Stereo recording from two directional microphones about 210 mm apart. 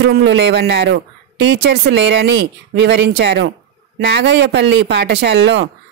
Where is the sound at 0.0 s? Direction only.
55° right (ahead or behind).